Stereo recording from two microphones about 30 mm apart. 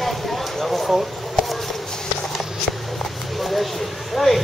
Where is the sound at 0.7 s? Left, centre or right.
Centre.